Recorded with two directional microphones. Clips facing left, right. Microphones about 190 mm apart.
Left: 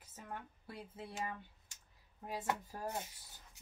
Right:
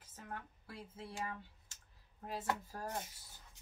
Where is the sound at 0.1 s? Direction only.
15° left (ahead or behind).